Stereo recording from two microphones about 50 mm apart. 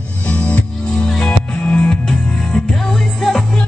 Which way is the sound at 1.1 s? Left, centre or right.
Centre.